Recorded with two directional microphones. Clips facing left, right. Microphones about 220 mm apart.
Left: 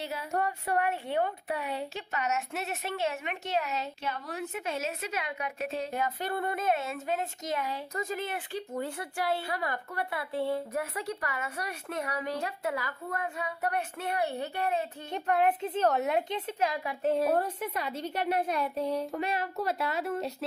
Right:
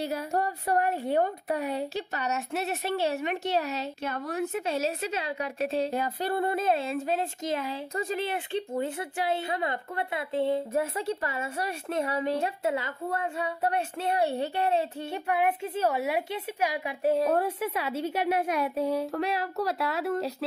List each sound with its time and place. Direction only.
0.0 s a woman's voice: 40° right (ahead or behind)
4.0 s a woman's voice: 50° right (ahead or behind)
4.6 s a woman's voice: 35° right (ahead or behind)
15.2 s a woman's voice: 10° right (ahead or behind)